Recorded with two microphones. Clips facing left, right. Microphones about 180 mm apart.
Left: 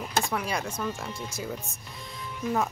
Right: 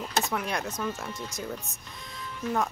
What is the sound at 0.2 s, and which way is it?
Speech, centre (ahead or behind).